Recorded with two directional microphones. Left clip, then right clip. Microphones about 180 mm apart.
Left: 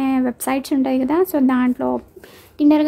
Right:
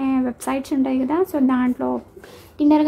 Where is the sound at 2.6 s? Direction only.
25° left (ahead or behind).